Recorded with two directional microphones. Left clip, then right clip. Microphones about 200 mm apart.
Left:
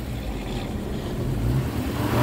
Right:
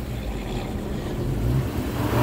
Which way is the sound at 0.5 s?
20° right (ahead or behind).